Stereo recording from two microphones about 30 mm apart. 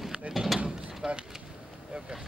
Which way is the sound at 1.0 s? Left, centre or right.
Centre.